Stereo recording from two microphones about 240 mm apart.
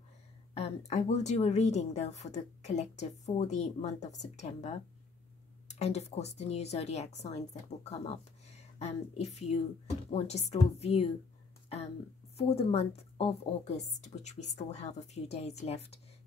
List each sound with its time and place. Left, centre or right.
0.6 s a woman's voice: left
12.4 s a woman's voice: left